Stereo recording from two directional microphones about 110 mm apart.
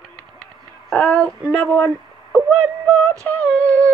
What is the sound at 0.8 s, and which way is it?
Female singing, 10° left (ahead or behind).